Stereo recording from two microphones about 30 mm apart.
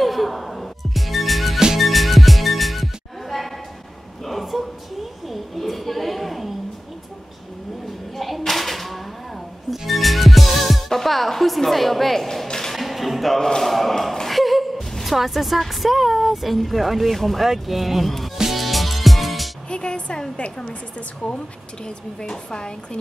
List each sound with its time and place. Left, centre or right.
0.0 s music: centre
4.2 s a sound: centre
8.2 s music: centre
12.7 s a sound: centre
13.6 s speech: centre
18.6 s music: centre
19.7 s a woman's voice: left
22.3 s a woman's voice: left